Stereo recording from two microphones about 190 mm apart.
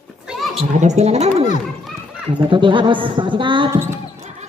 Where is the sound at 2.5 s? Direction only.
25° right (ahead or behind).